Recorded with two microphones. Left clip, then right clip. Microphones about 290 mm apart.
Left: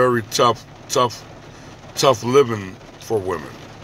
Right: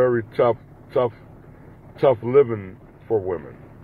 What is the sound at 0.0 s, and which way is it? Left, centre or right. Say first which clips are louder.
A man's voice: left 2 dB; centre.